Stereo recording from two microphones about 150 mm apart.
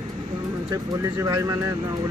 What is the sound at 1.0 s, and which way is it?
Speech, 20° right (ahead or behind).